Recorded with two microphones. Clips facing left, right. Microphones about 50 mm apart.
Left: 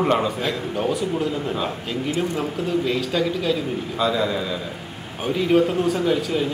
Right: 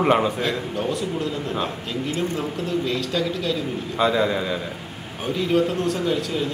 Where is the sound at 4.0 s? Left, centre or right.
Centre.